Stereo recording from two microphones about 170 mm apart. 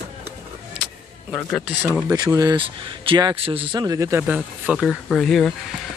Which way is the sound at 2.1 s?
20° right (ahead or behind).